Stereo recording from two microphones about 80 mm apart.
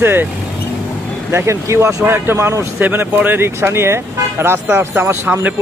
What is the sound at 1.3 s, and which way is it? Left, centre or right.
Speech, right.